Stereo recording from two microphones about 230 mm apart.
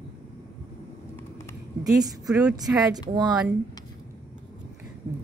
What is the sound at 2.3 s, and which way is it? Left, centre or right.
Speech, centre.